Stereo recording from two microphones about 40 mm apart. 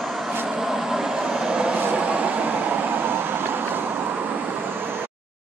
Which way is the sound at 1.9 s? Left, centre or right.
Right.